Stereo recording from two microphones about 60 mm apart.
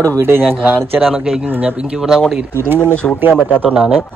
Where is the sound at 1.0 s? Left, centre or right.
Centre.